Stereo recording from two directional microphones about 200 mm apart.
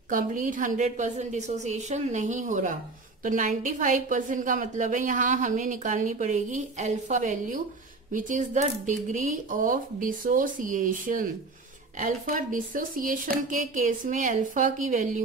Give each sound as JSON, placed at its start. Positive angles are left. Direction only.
{"t": 0.1, "sound": "a woman's voice", "side_deg": -40}